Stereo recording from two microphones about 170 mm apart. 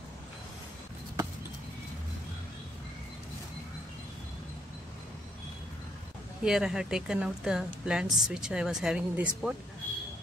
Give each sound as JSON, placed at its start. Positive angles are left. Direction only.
{"t": 6.4, "sound": "a woman's voice", "side_deg": -5}